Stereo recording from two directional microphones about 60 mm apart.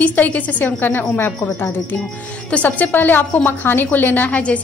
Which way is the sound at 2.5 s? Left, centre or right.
Left.